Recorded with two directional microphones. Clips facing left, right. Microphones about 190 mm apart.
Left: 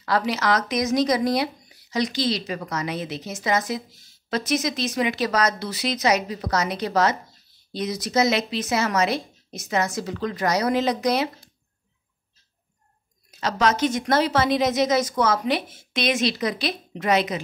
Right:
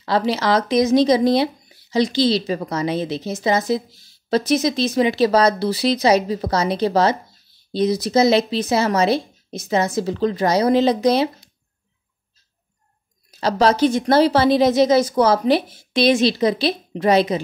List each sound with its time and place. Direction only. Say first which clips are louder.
0.0 s speech: right 4 dB; 30° right (ahead or behind)
13.3 s a woman's voice: right 5 dB; 35° right (ahead or behind)